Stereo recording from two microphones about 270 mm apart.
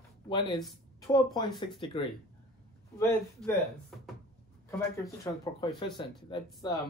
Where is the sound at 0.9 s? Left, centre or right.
Centre.